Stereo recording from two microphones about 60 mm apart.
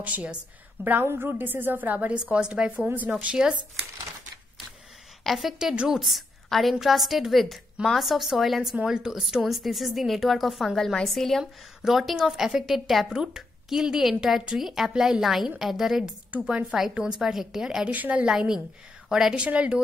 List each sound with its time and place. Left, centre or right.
0.0 s speech: right
1.0 s a woman's voice: right
2.1 s a woman's voice: centre
5.2 s a woman's voice: centre
16.3 s speech: right
16.7 s a woman's voice: centre
17.8 s speech: right
18.2 s a woman's voice: centre
19.3 s speech: centre